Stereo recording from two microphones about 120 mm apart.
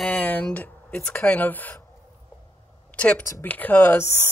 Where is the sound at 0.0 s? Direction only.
10° left (ahead or behind).